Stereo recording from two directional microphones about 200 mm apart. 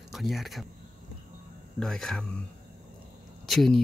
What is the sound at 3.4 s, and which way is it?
Speech, centre (ahead or behind).